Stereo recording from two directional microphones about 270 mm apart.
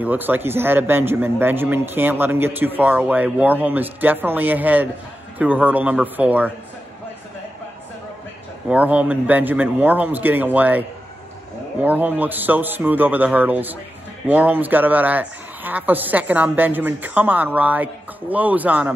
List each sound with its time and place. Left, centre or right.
0.0 s a man's voice: centre
8.6 s a man's voice: centre